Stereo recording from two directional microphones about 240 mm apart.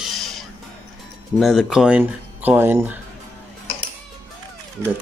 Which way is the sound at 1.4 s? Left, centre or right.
Centre.